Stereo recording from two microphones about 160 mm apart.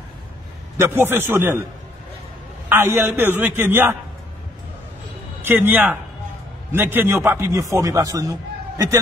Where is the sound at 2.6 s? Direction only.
15° right (ahead or behind).